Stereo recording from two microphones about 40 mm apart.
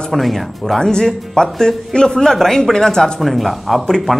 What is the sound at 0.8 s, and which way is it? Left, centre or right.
Speech, centre.